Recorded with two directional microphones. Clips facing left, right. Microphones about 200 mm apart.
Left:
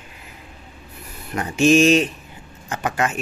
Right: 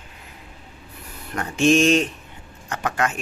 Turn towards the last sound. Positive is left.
turn(degrees=10)  # may be behind; listen again after turning